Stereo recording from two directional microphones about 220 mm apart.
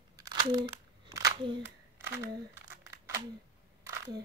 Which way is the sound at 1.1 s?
15° right (ahead or behind).